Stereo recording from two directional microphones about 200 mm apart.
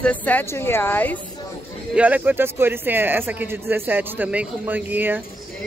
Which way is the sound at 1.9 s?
5° right (ahead or behind).